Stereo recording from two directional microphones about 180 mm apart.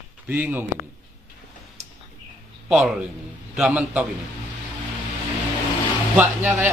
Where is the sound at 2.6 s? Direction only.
5° right (ahead or behind).